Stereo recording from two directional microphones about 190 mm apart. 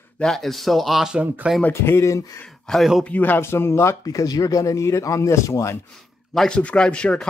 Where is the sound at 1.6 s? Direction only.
10° left (ahead or behind).